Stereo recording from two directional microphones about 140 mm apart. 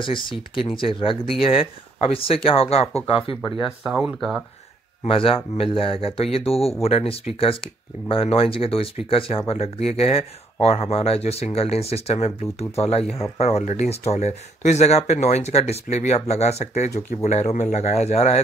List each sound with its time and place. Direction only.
0.0 s speech: 35° left (ahead or behind)
3.3 s speech: centre (ahead or behind)
5.0 s speech: 40° left (ahead or behind)